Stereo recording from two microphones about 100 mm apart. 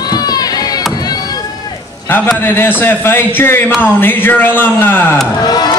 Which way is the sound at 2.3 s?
20° left (ahead or behind).